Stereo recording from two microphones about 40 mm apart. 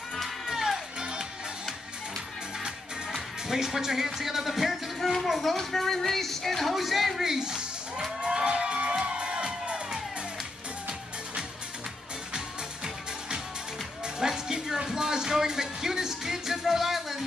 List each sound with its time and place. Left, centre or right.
0.5 s music: centre
3.4 s speech: centre
7.3 s music: centre
14.0 s music: centre